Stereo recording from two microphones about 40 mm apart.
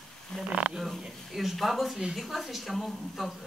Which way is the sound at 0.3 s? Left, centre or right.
Centre.